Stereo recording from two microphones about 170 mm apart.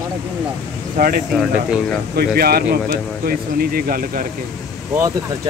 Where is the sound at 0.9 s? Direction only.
60° right (ahead or behind).